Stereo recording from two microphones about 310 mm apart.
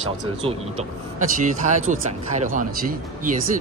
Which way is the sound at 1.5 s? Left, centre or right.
Right.